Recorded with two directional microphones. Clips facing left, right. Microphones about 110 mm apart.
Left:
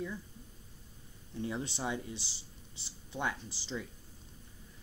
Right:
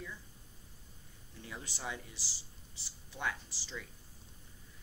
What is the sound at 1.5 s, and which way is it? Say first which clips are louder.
Speech: left 5 dB; 20° left (ahead or behind).